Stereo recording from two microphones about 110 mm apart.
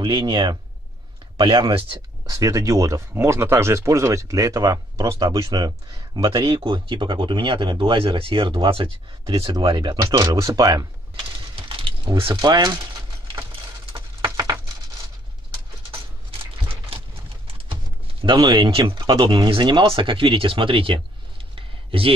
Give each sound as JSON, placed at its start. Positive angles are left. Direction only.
{"t": 0.0, "sound": "speech", "side_deg": -45}
{"t": 1.7, "sound": "speech", "side_deg": -55}
{"t": 2.2, "sound": "speech", "side_deg": -30}
{"t": 6.4, "sound": "speech", "side_deg": -45}
{"t": 10.1, "sound": "a sound", "side_deg": -30}
{"t": 12.4, "sound": "typing", "side_deg": -40}
{"t": 14.2, "sound": "a sound", "side_deg": -30}
{"t": 18.2, "sound": "speech", "side_deg": -45}
{"t": 21.5, "sound": "a sound", "side_deg": -55}